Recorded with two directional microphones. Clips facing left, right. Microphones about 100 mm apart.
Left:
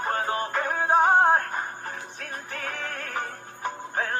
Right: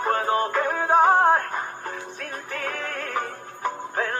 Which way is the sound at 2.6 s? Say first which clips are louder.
Right 4 dB; 40° right (ahead or behind).